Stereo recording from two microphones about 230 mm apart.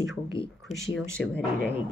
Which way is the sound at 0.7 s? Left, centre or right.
Left.